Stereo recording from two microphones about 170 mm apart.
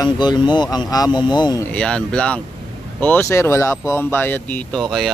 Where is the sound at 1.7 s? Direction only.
5° left (ahead or behind).